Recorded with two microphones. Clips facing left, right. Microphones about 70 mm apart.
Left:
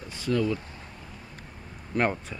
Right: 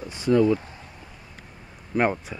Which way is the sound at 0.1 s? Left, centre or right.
Right.